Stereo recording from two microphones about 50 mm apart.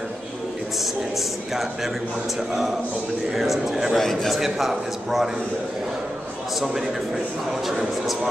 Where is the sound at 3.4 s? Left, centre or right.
Centre.